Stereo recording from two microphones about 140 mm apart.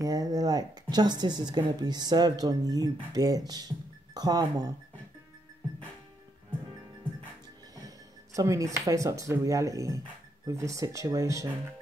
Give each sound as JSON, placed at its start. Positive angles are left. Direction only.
{"t": 0.0, "sound": "speech", "side_deg": -25}
{"t": 8.4, "sound": "speech", "side_deg": -25}